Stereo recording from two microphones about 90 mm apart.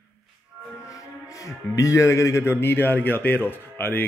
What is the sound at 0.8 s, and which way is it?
Speech, 40° left (ahead or behind).